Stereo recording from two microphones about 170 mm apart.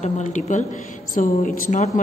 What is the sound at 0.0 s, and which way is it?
A woman's voice, 45° left (ahead or behind).